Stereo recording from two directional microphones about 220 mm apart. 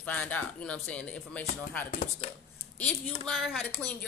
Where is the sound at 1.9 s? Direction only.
30° left (ahead or behind).